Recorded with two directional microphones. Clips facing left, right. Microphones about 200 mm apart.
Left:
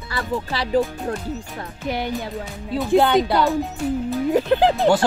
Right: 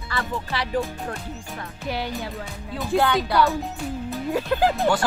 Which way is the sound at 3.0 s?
25° left (ahead or behind).